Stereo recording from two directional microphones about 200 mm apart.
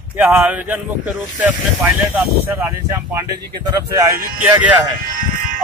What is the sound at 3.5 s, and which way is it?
Speech, 20° right (ahead or behind).